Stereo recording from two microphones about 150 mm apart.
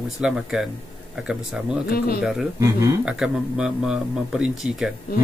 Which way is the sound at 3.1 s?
5° right (ahead or behind).